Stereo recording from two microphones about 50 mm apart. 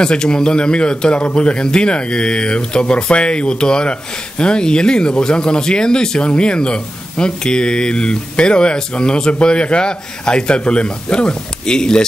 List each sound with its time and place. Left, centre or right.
0.0 s a man's voice: centre